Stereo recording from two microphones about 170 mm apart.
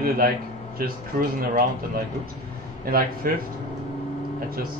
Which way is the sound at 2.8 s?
60° right (ahead or behind).